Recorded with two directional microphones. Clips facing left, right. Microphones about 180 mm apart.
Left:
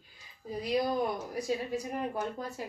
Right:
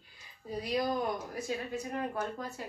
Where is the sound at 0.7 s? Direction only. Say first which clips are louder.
Left 2 dB; 10° left (ahead or behind).